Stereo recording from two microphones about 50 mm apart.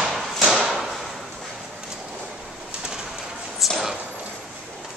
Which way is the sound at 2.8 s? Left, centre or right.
Centre.